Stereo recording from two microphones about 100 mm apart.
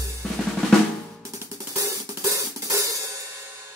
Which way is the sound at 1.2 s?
30° right (ahead or behind).